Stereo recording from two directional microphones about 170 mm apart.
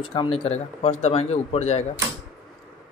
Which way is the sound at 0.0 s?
30° left (ahead or behind).